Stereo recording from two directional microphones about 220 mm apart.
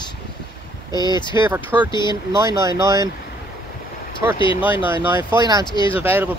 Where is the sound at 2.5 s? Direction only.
15° right (ahead or behind).